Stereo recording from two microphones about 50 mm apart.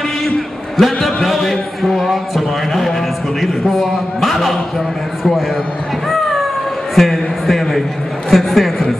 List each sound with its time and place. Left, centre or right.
0.7 s a man's voice: centre
7.0 s a man's voice: centre